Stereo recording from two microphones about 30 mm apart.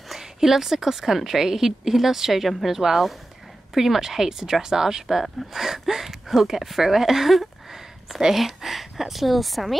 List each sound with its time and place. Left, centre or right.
0.1 s a woman's voice: centre
5.0 s speech: centre